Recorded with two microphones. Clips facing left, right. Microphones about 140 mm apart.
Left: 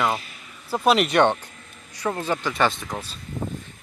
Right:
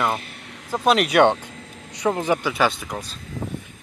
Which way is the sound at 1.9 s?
20° right (ahead or behind).